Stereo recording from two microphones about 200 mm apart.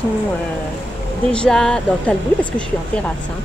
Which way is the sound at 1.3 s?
5° left (ahead or behind).